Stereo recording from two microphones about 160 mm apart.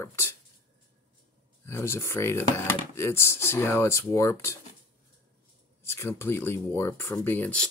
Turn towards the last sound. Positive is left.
turn(degrees=10)  # may be behind; listen again after turning